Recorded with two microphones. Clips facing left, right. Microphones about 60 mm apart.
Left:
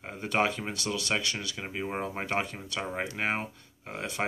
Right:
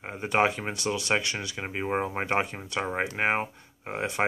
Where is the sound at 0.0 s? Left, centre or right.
Right.